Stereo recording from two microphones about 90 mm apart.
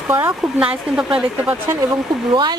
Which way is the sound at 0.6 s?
10° right (ahead or behind).